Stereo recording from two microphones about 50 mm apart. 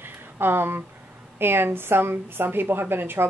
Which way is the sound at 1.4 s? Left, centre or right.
Right.